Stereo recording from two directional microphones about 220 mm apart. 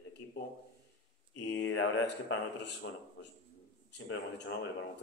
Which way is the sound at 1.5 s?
55° left (ahead or behind).